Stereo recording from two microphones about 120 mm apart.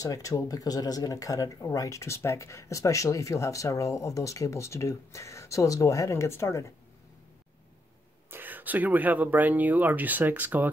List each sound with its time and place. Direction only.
0.0 s speech: 30° left (ahead or behind)
8.3 s speech: 15° right (ahead or behind)